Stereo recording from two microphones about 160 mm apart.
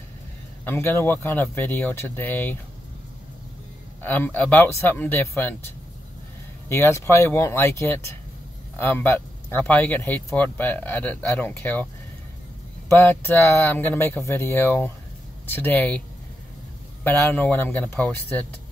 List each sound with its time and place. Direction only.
0.7 s speech: 15° left (ahead or behind)
4.0 s speech: 10° left (ahead or behind)
6.7 s speech: 15° left (ahead or behind)
17.0 s speech: 10° left (ahead or behind)